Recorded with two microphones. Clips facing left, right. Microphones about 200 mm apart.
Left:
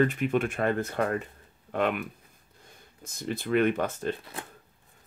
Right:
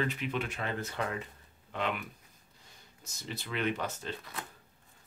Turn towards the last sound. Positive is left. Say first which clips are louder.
# left 7 dB
turn(degrees=50)  # may be behind; listen again after turning